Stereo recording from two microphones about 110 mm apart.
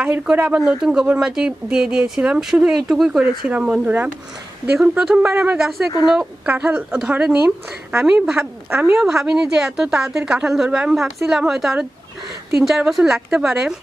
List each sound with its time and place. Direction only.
0.0 s a woman's voice: 10° right (ahead or behind)
5.3 s speech: 15° right (ahead or behind)
8.6 s a woman's voice: 20° right (ahead or behind)
9.0 s a woman's voice: 5° right (ahead or behind)